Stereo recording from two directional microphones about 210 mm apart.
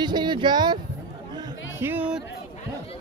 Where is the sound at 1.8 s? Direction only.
10° right (ahead or behind).